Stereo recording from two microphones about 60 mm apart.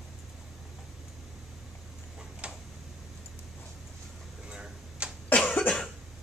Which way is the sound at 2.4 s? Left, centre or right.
Centre.